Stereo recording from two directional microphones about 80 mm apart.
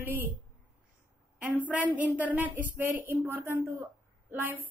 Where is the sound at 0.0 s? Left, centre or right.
Right.